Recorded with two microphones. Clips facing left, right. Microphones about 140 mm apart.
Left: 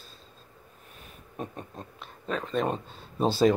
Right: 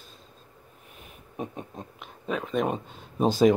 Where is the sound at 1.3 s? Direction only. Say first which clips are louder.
Right 2 dB; 15° right (ahead or behind).